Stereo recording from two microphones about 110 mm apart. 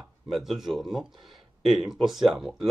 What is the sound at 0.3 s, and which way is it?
Speech, centre (ahead or behind).